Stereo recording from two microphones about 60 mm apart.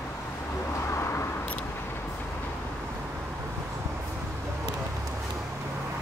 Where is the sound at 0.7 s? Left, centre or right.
Left.